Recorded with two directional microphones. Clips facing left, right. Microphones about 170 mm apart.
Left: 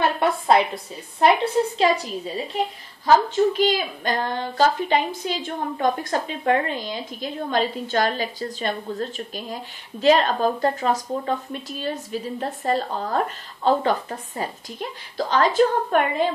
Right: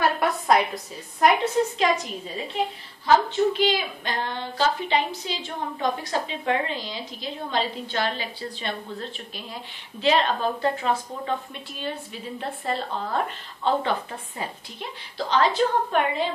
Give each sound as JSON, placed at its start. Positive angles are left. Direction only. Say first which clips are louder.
{"t": 0.0, "sound": "a woman's voice", "louder": "left 2 dB", "side_deg": 25}
{"t": 3.5, "sound": "a woman's voice", "louder": "left 2 dB", "side_deg": 45}